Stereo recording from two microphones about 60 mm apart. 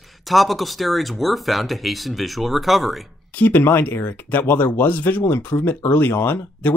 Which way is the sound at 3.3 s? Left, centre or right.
Left.